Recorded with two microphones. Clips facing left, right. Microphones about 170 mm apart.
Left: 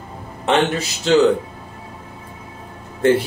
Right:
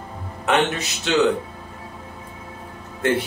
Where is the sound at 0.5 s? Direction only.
30° left (ahead or behind).